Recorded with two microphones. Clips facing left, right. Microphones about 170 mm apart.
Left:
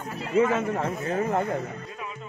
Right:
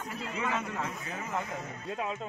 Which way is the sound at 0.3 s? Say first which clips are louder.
Left 13 dB; 50° left (ahead or behind).